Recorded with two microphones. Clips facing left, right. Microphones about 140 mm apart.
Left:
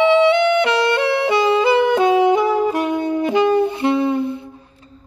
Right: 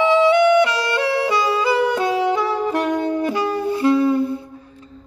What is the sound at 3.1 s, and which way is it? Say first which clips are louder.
Saxophone: left 4 dB; 20° left (ahead or behind).